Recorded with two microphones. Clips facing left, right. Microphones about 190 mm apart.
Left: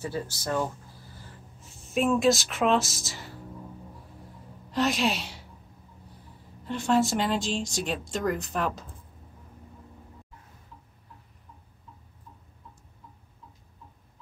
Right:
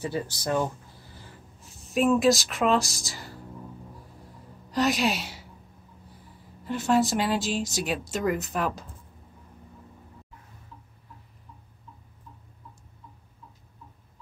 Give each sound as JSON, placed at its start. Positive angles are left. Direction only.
{"t": 0.0, "sound": "speech", "side_deg": -15}
{"t": 1.9, "sound": "speech", "side_deg": 0}
{"t": 4.6, "sound": "a woman's voice", "side_deg": 0}
{"t": 6.6, "sound": "speech", "side_deg": -5}